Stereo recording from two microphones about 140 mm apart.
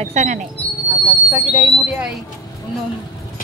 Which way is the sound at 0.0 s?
50° right (ahead or behind).